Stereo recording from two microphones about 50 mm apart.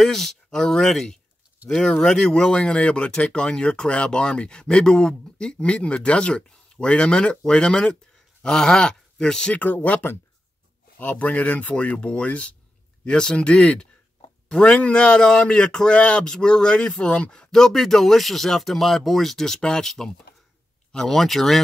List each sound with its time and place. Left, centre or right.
0.0 s speech: centre
9.6 s speech: left; by 21.5 s centre